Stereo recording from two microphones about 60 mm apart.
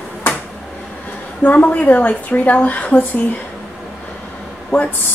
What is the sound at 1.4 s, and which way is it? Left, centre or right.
A woman's voice, left.